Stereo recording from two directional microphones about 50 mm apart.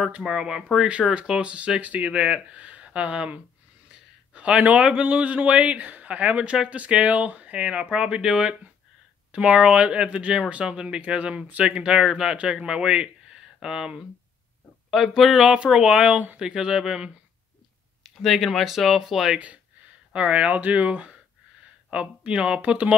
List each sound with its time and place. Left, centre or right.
0.2 s speech: centre
0.7 s a man's voice: right
14.9 s a man's voice: centre
18.0 s speech: centre
19.3 s a man's voice: right